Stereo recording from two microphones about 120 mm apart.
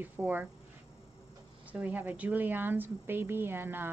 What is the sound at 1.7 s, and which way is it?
Speech, 10° right (ahead or behind).